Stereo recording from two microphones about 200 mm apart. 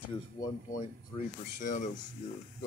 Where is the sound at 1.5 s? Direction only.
40° left (ahead or behind).